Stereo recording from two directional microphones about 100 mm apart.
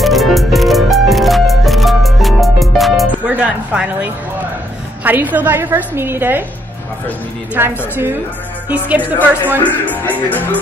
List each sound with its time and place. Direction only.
0.0 s music: centre (ahead or behind)
3.3 s a woman's voice: 15° right (ahead or behind)
7.5 s a woman's voice: 20° right (ahead or behind)
9.6 s music: 15° left (ahead or behind)